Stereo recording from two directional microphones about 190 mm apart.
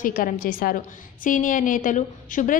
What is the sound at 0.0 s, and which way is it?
A woman's voice, 50° left (ahead or behind).